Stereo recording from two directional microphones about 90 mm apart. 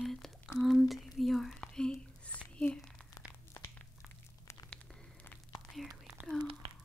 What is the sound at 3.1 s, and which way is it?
Crumpling, 40° left (ahead or behind).